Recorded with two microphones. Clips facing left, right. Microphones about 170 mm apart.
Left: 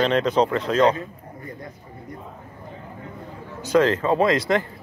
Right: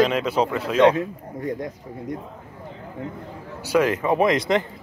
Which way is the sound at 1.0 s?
90° right.